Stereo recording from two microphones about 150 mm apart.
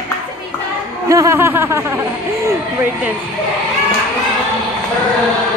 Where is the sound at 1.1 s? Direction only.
20° right (ahead or behind).